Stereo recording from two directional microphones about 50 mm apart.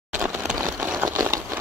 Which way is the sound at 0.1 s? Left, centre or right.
Right.